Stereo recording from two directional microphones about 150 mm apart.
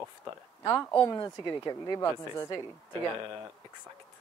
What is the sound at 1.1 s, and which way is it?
Speech, 25° left (ahead or behind).